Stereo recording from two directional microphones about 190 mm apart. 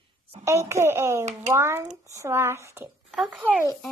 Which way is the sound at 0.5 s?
15° right (ahead or behind).